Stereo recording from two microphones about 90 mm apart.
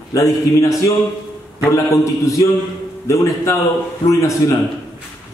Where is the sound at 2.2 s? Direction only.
40° left (ahead or behind).